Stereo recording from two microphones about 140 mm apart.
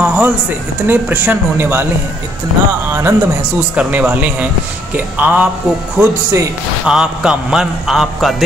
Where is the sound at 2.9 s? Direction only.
15° right (ahead or behind).